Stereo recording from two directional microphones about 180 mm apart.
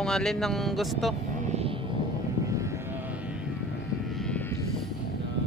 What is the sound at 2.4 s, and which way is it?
Vehicle, 15° right (ahead or behind).